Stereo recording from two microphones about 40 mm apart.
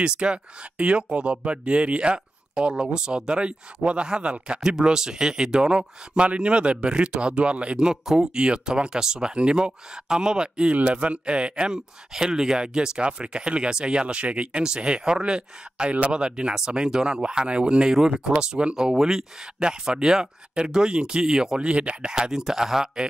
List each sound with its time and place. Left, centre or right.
0.0 s speech: right
7.9 s speech: centre
8.4 s speech: right
10.7 s speech: right
11.7 s speech: centre
18.8 s speech: centre